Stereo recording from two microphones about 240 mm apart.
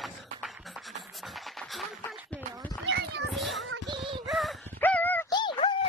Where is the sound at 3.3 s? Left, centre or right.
Centre.